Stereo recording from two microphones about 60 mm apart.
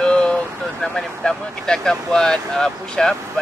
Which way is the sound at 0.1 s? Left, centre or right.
Centre.